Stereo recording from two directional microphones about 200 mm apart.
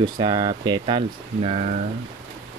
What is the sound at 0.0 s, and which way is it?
Speech, 25° right (ahead or behind).